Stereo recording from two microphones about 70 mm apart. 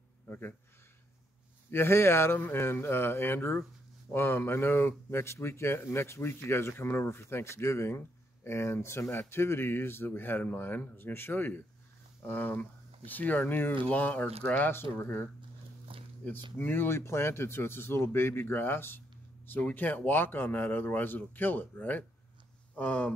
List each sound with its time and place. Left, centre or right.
0.3 s speech: left
1.7 s speech: left
14.7 s speech: left
16.5 s speech: left